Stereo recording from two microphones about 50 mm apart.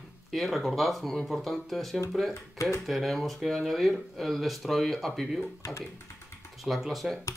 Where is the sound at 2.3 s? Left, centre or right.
Left.